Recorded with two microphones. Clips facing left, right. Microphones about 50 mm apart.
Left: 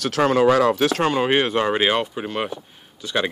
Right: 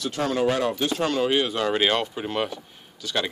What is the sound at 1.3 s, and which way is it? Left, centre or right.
Speech, left.